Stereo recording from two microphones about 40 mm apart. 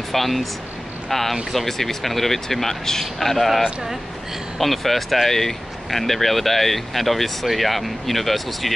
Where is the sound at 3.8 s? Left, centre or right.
Centre.